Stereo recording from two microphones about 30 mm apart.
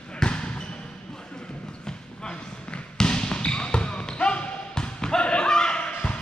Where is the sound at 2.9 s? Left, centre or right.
Left.